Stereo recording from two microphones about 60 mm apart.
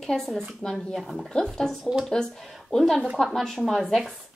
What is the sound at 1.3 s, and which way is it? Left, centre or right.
Speech, centre.